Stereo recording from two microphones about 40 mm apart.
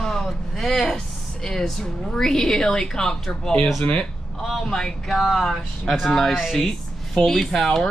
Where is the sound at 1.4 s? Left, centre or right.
Centre.